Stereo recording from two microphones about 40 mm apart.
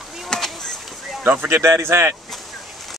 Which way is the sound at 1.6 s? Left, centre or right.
Right.